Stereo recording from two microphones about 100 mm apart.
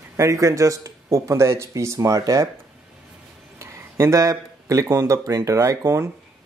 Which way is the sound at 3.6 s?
30° right (ahead or behind).